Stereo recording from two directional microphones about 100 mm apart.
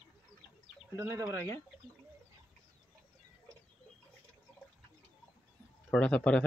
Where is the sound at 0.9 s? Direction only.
30° right (ahead or behind).